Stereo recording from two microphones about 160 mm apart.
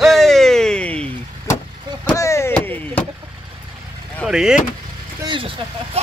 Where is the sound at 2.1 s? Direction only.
20° left (ahead or behind).